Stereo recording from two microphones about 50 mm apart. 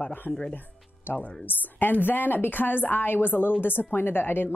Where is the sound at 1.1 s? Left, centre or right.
Left.